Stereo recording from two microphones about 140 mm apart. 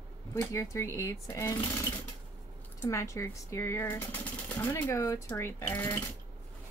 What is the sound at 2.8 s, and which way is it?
Speech, 20° left (ahead or behind).